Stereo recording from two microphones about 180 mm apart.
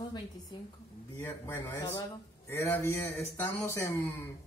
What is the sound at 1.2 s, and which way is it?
A man's voice, 15° left (ahead or behind).